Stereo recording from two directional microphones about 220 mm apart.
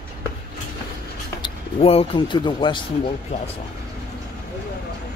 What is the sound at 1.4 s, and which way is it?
Speech, 25° left (ahead or behind).